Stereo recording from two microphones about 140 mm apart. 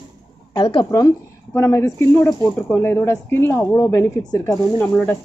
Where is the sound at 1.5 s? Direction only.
20° left (ahead or behind).